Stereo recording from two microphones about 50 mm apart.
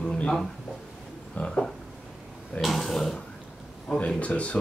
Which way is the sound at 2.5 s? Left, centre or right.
Centre.